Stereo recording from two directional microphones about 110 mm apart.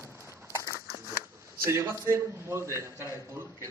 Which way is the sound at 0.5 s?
30° left (ahead or behind).